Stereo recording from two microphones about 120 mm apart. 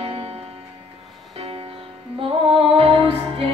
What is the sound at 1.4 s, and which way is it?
Music, 50° right (ahead or behind).